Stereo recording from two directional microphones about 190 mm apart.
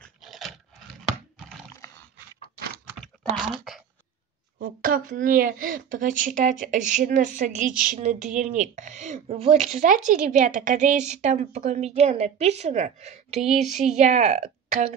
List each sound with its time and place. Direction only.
0.0 s dog: centre (ahead or behind)
4.6 s speech: 45° right (ahead or behind)